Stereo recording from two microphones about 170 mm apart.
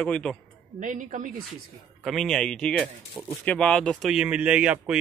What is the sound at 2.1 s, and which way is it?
Speech, centre (ahead or behind).